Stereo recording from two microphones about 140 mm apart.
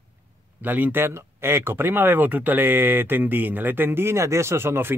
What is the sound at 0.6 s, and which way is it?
Speech, 15° right (ahead or behind).